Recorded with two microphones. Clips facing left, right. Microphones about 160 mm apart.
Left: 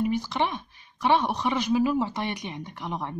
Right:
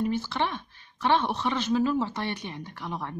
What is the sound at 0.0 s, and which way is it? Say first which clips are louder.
A woman's voice: left 2 dB; 15° left (ahead or behind).